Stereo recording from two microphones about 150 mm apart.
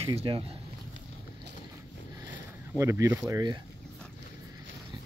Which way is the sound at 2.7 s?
20° right (ahead or behind).